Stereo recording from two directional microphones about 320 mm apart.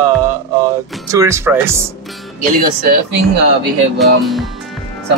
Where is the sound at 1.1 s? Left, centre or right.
Centre.